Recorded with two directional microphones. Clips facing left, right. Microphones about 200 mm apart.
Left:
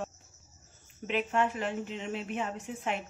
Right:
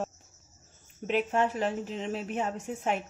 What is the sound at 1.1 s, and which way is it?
Speech, 40° right (ahead or behind).